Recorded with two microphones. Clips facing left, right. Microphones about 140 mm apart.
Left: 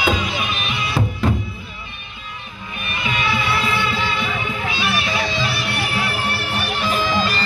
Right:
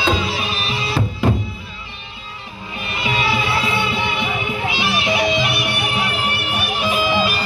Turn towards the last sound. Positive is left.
turn(degrees=-10)  # may be behind; listen again after turning